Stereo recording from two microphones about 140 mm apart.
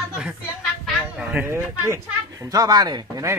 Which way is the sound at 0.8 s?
5° right (ahead or behind).